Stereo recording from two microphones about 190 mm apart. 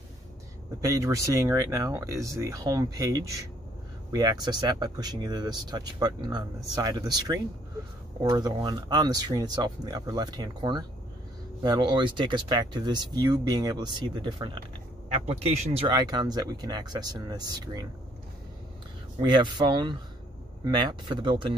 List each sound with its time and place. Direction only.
0.7 s speech: 15° right (ahead or behind)
19.2 s speech: 25° right (ahead or behind)